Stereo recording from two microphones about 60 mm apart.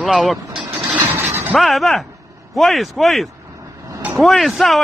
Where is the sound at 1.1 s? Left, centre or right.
Right.